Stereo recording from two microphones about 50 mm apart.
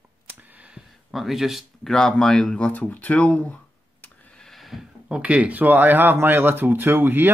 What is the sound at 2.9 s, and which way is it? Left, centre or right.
Speech, left.